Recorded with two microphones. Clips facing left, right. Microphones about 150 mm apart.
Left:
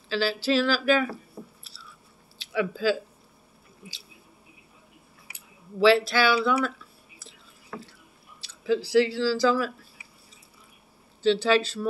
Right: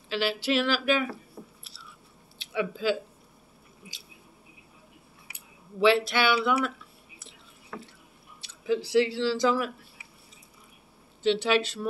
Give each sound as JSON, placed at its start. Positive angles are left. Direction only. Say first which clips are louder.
{"t": 0.1, "sound": "a sound", "louder": "left 2 dB", "side_deg": -20}
{"t": 2.3, "sound": "speech", "louder": "left 2 dB", "side_deg": -20}
{"t": 5.8, "sound": "speech", "louder": "left 3 dB", "side_deg": -20}
{"t": 8.6, "sound": "speech", "louder": "left 2 dB", "side_deg": -20}
{"t": 11.2, "sound": "speech", "louder": "left 3 dB", "side_deg": -20}